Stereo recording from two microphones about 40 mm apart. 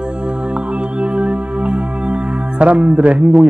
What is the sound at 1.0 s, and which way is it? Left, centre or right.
Music, right.